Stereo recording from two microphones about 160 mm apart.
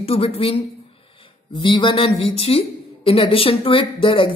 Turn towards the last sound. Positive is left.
turn(degrees=30)  # may be behind; listen again after turning